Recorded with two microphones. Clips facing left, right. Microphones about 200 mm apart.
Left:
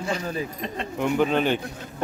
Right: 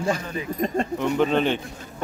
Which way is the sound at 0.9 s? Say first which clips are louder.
Left 1 dB; 5° left (ahead or behind).